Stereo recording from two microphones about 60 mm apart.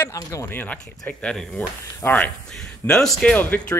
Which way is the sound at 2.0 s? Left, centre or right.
Left.